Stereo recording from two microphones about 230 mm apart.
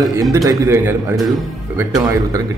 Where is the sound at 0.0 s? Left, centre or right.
Centre.